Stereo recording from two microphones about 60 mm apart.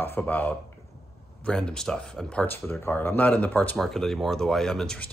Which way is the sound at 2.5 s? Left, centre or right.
Left.